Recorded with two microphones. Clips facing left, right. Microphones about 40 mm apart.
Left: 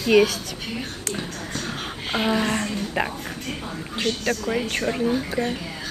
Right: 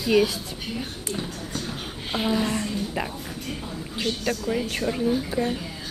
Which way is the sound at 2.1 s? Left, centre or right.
Left.